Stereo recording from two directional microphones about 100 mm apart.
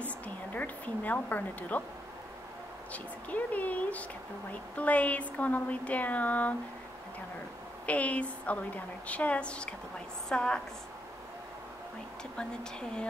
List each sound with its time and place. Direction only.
0.6 s a woman's voice: 15° left (ahead or behind)
2.9 s a woman's voice: 15° left (ahead or behind)
7.8 s a woman's voice: 15° left (ahead or behind)